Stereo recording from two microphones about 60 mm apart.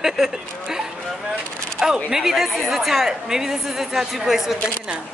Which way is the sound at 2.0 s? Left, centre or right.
Centre.